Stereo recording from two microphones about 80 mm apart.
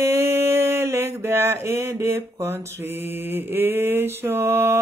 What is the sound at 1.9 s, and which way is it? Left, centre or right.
Mantra, right.